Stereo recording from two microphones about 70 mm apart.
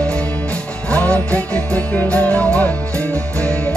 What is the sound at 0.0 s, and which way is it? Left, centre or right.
Music, centre.